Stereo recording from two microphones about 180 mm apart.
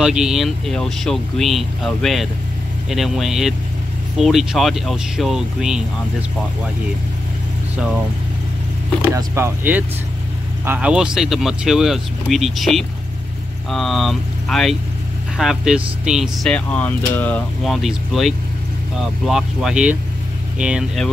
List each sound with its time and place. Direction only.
0.0 s speech: 5° right (ahead or behind)
9.1 s speech: 15° right (ahead or behind)